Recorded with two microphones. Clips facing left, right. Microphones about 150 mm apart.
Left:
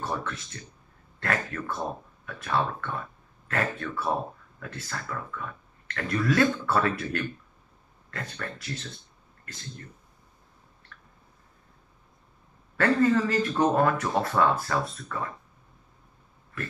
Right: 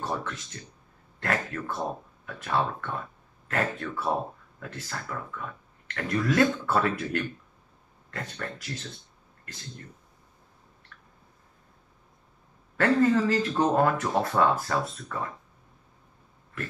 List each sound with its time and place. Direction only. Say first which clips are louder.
0.0 s speech: even; 20° right (ahead or behind)
12.7 s speech: even; 20° right (ahead or behind)